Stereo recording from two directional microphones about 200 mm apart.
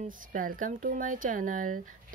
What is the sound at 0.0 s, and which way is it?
Speech, 40° right (ahead or behind).